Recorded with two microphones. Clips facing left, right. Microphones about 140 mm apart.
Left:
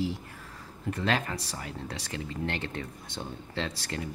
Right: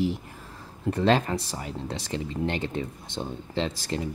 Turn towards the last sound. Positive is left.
turn(degrees=-20)  # may be behind; listen again after turning